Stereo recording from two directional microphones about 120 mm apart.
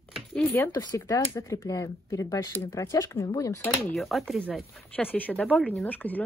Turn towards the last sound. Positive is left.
turn(degrees=15)  # may be behind; listen again after turning